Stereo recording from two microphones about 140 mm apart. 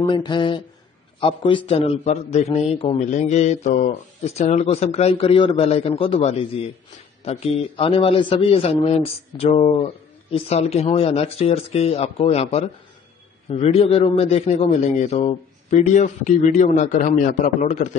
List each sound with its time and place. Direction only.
0.0 s a man's voice: 30° left (ahead or behind)
3.0 s a man's voice: 55° left (ahead or behind)
16.9 s a man's voice: 70° left (ahead or behind)